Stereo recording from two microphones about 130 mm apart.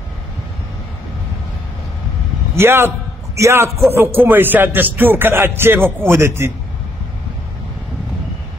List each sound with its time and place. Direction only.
2.5 s music: 20° right (ahead or behind)
3.3 s a man's voice: 20° right (ahead or behind)
3.9 s music: 15° right (ahead or behind)